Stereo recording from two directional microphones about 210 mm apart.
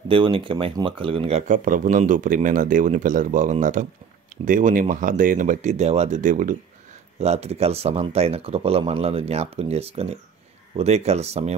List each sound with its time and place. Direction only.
0.1 s speech: 25° right (ahead or behind)